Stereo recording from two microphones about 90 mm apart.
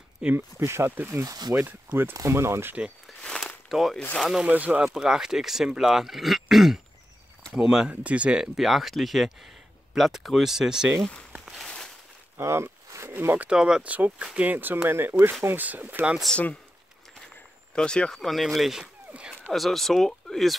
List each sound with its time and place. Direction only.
0.2 s speech: 15° right (ahead or behind)
0.6 s speech: 30° right (ahead or behind)
1.1 s speech: 40° right (ahead or behind)
1.6 s speech: 20° right (ahead or behind)
3.2 s a sound: 10° left (ahead or behind)
4.2 s speech: 5° right (ahead or behind)
4.5 s speech: 15° right (ahead or behind)
4.9 s speech: 5° right (ahead or behind)
11.4 s a sound: 5° left (ahead or behind)
12.4 s speech: 30° right (ahead or behind)
13.5 s speech: 10° right (ahead or behind)
17.7 s speech: 10° left (ahead or behind)